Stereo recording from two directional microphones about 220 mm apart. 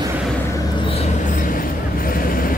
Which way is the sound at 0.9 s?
35° left (ahead or behind).